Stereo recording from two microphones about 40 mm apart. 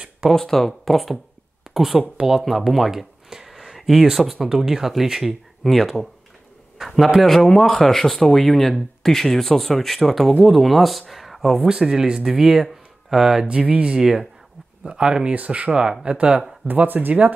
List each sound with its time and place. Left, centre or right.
0.3 s a man's voice: centre
11.6 s speech: centre
13.5 s speech: right
13.9 s speech: centre
15.3 s speech: right
16.7 s speech: right